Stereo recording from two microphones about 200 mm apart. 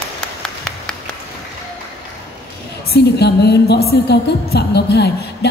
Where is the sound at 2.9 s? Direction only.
55° left (ahead or behind).